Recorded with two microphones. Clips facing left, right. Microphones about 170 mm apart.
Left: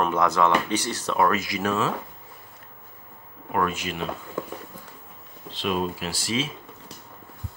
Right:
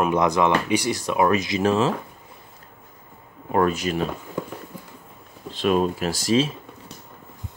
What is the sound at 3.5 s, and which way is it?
Speech, 40° right (ahead or behind).